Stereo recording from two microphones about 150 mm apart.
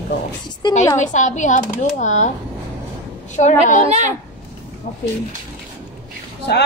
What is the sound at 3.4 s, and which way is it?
Speech, 55° left (ahead or behind).